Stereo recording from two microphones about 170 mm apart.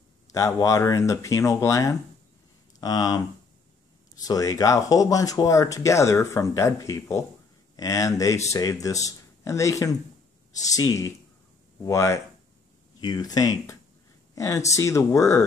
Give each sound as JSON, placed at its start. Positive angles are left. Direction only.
{"t": 0.3, "sound": "speech", "side_deg": 20}